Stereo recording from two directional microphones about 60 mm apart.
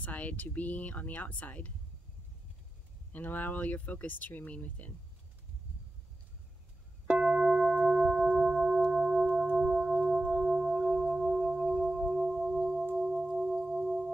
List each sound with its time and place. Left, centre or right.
0.0 s speech: left
3.1 s speech: left
7.2 s singing bowl: centre